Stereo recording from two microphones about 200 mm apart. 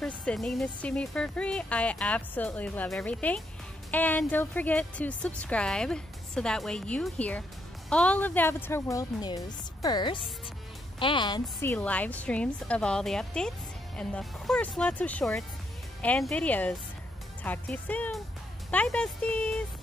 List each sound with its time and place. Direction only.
0.0 s a woman's voice: 5° left (ahead or behind); by 11.7 s 20° left (ahead or behind)
11.7 s a woman's voice: 5° left (ahead or behind)